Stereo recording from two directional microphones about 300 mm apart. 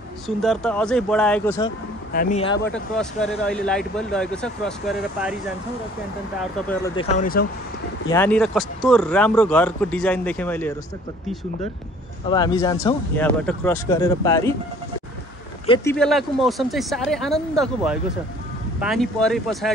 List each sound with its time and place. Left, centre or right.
0.4 s speech: centre
2.1 s speech: left
2.6 s speech: centre
6.7 s speech: centre
7.1 s speech: left
8.1 s speech: centre
12.3 s speech: centre
15.6 s speech: centre